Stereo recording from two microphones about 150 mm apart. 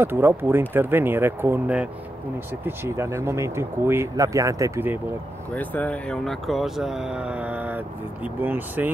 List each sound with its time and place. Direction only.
0.0 s speech: 15° right (ahead or behind)
5.5 s speech: 10° left (ahead or behind); by 8.9 s 10° right (ahead or behind)